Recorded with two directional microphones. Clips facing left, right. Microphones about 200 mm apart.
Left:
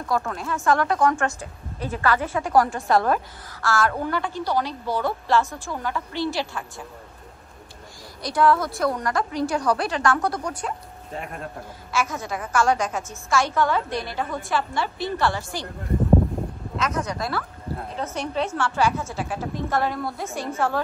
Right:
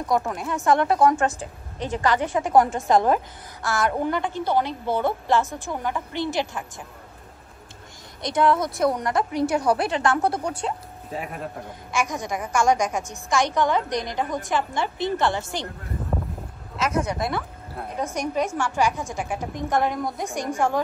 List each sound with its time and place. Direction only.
0.0 s a woman's voice: 20° right (ahead or behind)
8.2 s a woman's voice: 20° right (ahead or behind)
11.1 s a man's voice: 5° right (ahead or behind)
11.9 s a woman's voice: 15° right (ahead or behind)
16.7 s speech: 5° right (ahead or behind)
17.0 s a woman's voice: 20° right (ahead or behind)